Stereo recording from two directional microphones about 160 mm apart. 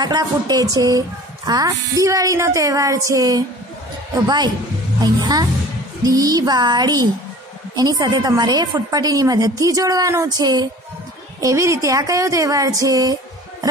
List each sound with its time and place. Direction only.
0.0 s a woman's voice: 25° right (ahead or behind)
5.0 s a woman's voice: 25° right (ahead or behind)